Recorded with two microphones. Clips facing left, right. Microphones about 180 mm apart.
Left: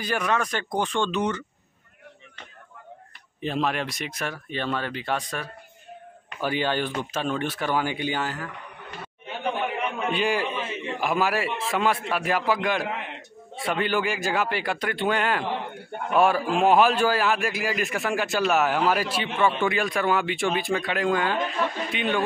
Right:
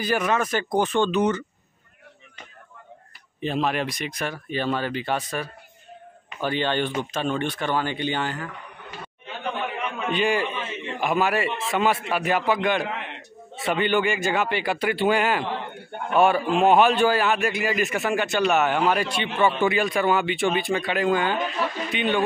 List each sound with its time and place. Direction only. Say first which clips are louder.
0.0 s a man's voice: right 3 dB; 5° right (ahead or behind)
3.3 s a man's voice: right 2 dB; centre (ahead or behind)
6.3 s a man's voice: right 1 dB; 5° left (ahead or behind)